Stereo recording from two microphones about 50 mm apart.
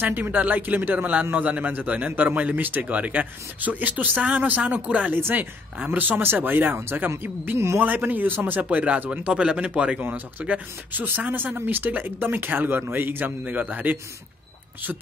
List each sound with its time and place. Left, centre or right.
0.0 s speech: right
5.1 s speech: right
6.2 s speech: right
7.5 s a man's voice: right
7.8 s speech: right
9.9 s speech: right